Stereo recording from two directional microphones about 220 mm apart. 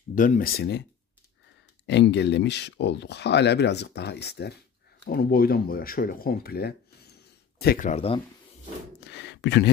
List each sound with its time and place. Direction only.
0.1 s speech: 35° left (ahead or behind)
1.9 s speech: 50° left (ahead or behind)
7.9 s speech: 25° left (ahead or behind)
9.0 s speech: 50° left (ahead or behind)